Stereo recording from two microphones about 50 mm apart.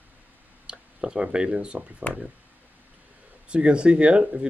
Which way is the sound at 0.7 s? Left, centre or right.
Centre.